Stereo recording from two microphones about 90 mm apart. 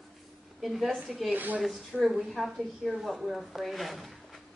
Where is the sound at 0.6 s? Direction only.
Centre (ahead or behind).